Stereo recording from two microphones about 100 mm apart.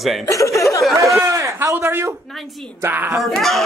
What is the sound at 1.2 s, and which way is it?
A man's voice, 30° right (ahead or behind).